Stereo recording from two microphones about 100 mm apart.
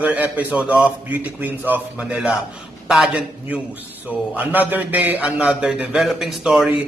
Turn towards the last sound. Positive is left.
turn(degrees=-5)  # may be behind; listen again after turning